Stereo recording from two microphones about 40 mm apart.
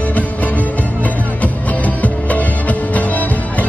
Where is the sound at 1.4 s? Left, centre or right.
Left.